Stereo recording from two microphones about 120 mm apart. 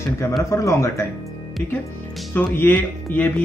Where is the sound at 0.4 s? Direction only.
25° left (ahead or behind).